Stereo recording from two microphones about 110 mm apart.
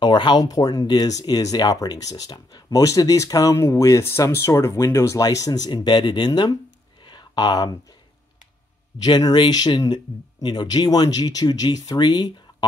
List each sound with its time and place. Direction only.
0.0 s speech: 45° left (ahead or behind)
7.0 s a sound: 45° left (ahead or behind)
9.0 s speech: 40° left (ahead or behind)